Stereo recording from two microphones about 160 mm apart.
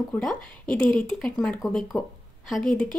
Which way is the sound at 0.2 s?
5° left (ahead or behind).